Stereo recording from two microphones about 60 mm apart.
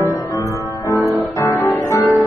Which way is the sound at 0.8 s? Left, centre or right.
Left.